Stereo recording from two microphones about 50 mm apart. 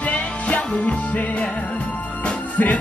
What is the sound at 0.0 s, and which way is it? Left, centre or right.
Music, left.